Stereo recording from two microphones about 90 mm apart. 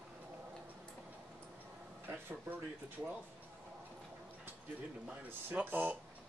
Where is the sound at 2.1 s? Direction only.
20° right (ahead or behind).